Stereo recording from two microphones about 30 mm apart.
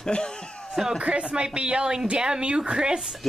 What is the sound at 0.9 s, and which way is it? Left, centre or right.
A woman's voice, right.